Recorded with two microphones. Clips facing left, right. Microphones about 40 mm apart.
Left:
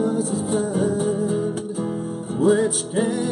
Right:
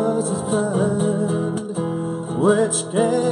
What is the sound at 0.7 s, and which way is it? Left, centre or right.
Music, centre.